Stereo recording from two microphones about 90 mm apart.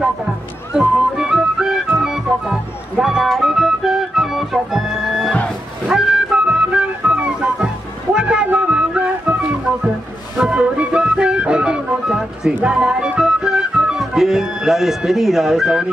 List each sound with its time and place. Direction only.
0.7 s music: 5° right (ahead or behind)
10.5 s music: 10° right (ahead or behind)